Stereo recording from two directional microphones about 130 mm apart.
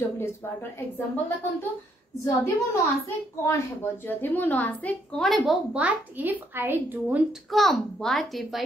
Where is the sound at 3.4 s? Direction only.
20° left (ahead or behind); by 5.6 s centre (ahead or behind).